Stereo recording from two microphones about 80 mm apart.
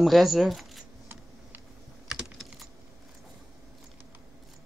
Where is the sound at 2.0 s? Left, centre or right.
Centre.